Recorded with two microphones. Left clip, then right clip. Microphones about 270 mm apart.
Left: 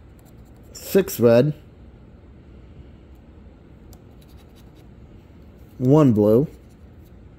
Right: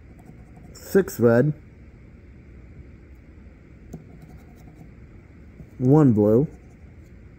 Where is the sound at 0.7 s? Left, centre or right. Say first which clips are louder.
Left 1 dB; centre.